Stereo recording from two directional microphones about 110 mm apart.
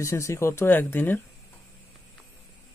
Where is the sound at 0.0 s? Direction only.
25° left (ahead or behind).